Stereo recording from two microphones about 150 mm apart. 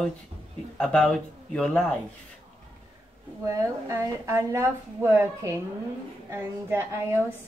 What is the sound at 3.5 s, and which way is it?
A woman's voice, 20° right (ahead or behind).